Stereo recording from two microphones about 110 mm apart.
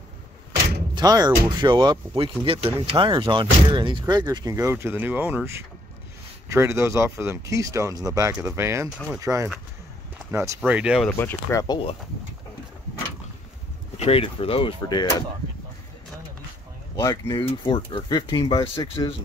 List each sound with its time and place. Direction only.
0.9 s speech: 35° right (ahead or behind)
4.0 s speech: 40° right (ahead or behind)
4.7 s speech: 20° right (ahead or behind)
10.7 s speech: 10° right (ahead or behind)
11.1 s speech: 20° left (ahead or behind)
13.9 s speech: 65° left (ahead or behind)
14.8 s speech: 35° left (ahead or behind)
16.9 s speech: 35° left (ahead or behind)